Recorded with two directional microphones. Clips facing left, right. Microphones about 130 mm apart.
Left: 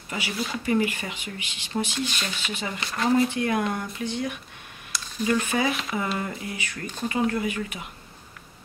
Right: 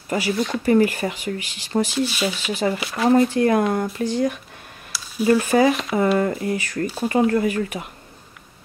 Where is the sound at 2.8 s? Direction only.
5° right (ahead or behind).